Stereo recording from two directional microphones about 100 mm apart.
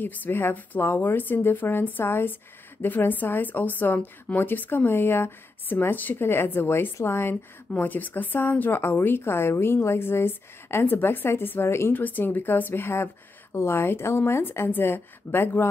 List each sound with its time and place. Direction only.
0.0 s a woman's voice: 20° left (ahead or behind)